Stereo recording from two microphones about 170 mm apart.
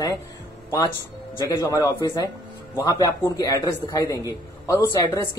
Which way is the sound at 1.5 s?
20° left (ahead or behind).